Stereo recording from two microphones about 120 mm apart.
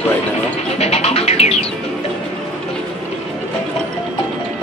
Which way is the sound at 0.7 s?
60° left (ahead or behind).